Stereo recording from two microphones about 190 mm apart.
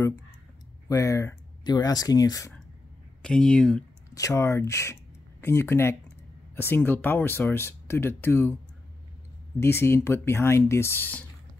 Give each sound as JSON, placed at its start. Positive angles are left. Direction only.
{"t": 0.8, "sound": "speech", "side_deg": 15}
{"t": 3.2, "sound": "speech", "side_deg": 5}
{"t": 4.1, "sound": "speech", "side_deg": 15}
{"t": 9.6, "sound": "speech", "side_deg": 15}